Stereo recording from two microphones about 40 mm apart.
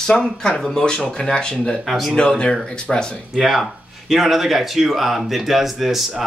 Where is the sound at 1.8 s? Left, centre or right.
Centre.